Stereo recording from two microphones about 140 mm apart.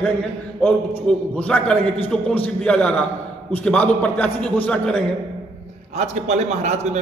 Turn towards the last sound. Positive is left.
turn(degrees=-55)  # may be behind; listen again after turning